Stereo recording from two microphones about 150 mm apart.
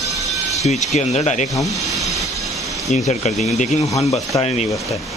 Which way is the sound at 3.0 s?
50° left (ahead or behind).